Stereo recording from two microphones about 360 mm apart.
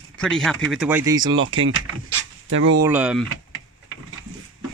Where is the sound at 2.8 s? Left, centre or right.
Centre.